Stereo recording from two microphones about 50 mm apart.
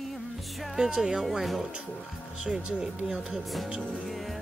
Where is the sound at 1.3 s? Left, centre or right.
Centre.